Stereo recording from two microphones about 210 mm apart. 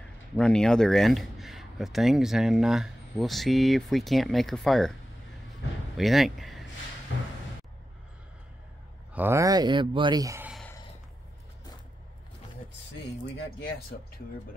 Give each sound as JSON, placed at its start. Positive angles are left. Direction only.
{"t": 0.4, "sound": "speech", "side_deg": 5}
{"t": 5.9, "sound": "speech", "side_deg": 0}
{"t": 7.1, "sound": "a sound", "side_deg": 60}
{"t": 9.1, "sound": "speech", "side_deg": -10}
{"t": 13.6, "sound": "speech", "side_deg": 45}